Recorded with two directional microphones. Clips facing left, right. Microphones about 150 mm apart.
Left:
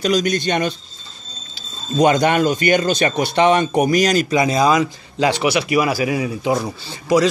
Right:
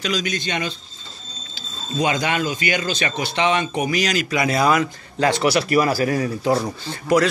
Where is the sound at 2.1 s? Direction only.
55° left (ahead or behind); by 4.4 s 40° left (ahead or behind).